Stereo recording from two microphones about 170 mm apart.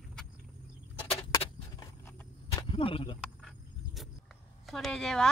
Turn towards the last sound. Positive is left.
turn(degrees=5)  # may be behind; listen again after turning